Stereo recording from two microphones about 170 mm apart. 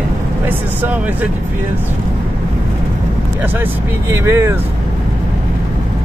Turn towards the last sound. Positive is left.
turn(degrees=-15)  # may be behind; listen again after turning